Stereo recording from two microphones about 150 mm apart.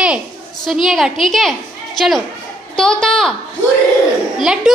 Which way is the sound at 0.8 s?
Centre (ahead or behind).